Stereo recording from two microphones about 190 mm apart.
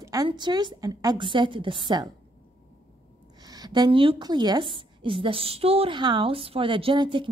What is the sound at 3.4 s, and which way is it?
A woman's voice, 20° right (ahead or behind).